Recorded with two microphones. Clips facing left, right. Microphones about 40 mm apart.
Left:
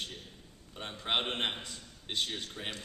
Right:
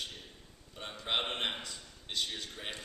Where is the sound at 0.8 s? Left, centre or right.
Centre.